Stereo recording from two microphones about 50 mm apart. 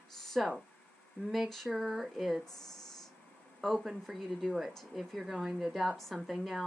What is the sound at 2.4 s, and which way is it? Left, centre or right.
Speech, centre.